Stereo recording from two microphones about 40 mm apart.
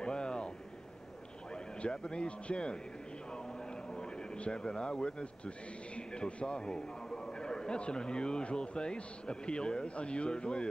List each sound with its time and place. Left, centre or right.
0.0 s a sound: left
1.8 s a man's voice: left
4.5 s a man's voice: left